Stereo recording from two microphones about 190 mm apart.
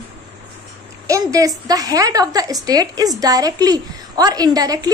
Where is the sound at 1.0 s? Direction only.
15° right (ahead or behind).